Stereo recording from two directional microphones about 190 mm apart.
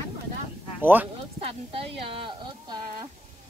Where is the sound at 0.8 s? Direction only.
10° right (ahead or behind).